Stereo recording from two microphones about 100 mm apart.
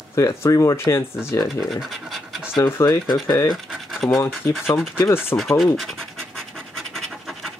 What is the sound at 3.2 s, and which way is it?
Speech, 30° left (ahead or behind).